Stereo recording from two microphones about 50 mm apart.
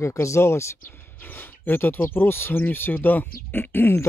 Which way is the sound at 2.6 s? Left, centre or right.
Left.